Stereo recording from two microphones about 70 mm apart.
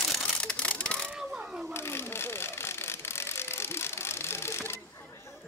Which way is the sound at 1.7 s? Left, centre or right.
Left.